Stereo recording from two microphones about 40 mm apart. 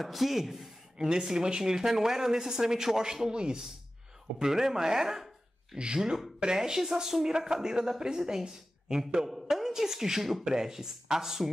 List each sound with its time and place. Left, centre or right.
0.0 s speech: centre
0.9 s a woman's voice: centre